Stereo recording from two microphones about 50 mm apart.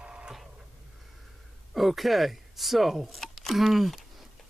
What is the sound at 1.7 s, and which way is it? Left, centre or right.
Speech, centre.